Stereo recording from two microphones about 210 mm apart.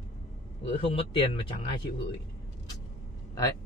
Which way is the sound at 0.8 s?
25° left (ahead or behind).